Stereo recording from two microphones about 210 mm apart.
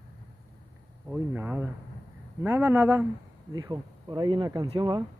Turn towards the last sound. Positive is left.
turn(degrees=-20)  # may be behind; listen again after turning